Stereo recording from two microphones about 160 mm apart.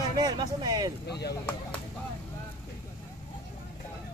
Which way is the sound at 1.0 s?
90° left.